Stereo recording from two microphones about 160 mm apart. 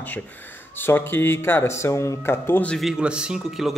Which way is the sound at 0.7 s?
15° left (ahead or behind).